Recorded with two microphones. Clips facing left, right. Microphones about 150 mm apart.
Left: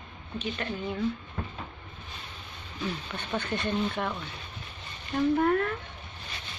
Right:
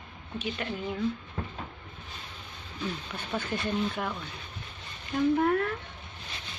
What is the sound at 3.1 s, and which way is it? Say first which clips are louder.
Speech: left 1 dB; 5° right (ahead or behind).